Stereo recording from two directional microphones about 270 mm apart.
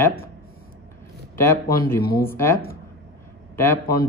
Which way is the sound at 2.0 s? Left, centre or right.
Left.